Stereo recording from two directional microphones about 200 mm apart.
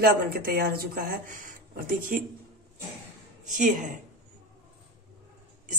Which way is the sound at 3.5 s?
40° right (ahead or behind).